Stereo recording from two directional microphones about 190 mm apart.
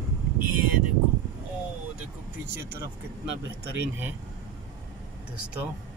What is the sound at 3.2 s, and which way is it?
Speech, 70° right (ahead or behind).